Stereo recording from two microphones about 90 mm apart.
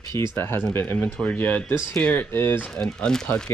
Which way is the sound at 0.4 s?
25° left (ahead or behind).